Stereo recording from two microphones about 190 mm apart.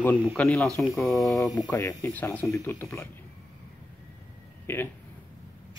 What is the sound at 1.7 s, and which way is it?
Speech, 15° left (ahead or behind).